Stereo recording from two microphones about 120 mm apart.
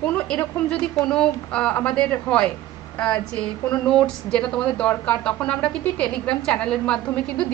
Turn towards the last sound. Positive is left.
turn(degrees=10)  # may be behind; listen again after turning